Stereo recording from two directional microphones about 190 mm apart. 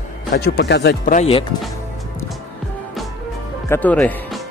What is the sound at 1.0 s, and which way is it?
Speech, 45° left (ahead or behind).